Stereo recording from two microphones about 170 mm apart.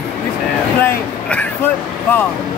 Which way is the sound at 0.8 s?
10° left (ahead or behind).